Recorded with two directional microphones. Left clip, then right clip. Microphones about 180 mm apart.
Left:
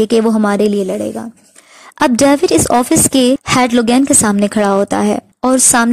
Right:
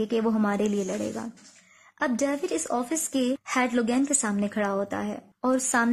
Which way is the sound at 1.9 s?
55° left (ahead or behind).